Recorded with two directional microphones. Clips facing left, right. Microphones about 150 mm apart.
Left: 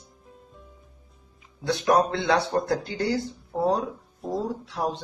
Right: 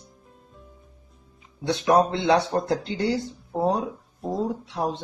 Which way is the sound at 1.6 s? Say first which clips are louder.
Right 2 dB; 20° right (ahead or behind).